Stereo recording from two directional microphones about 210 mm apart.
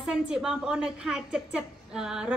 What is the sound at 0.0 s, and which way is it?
A woman's voice, 5° right (ahead or behind).